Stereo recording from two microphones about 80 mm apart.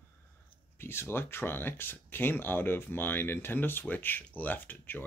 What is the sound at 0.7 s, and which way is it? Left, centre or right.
Speech, left.